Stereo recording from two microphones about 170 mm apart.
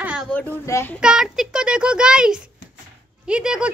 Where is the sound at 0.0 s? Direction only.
5° right (ahead or behind).